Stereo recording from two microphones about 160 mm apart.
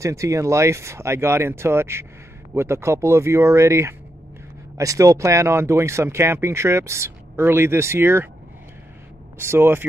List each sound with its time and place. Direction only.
0.0 s speech: 20° right (ahead or behind)
9.4 s speech: 15° right (ahead or behind)